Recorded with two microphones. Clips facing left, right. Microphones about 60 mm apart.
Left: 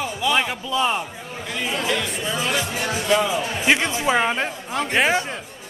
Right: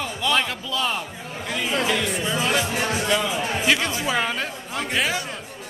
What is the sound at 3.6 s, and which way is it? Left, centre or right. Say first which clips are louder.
A man's voice: left 4 dB; left.